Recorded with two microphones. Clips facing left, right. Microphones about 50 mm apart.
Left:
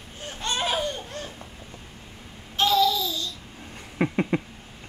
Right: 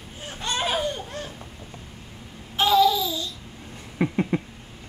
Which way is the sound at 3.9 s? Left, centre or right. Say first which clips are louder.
Even; centre.